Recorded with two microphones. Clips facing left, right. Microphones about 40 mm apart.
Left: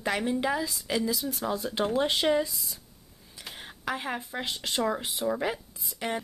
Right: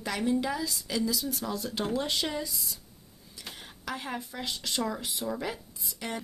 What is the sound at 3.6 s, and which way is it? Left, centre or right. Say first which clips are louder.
Speech: left 5 dB; left.